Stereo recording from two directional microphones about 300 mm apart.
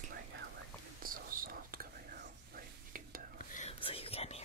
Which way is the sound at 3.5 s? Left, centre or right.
Centre.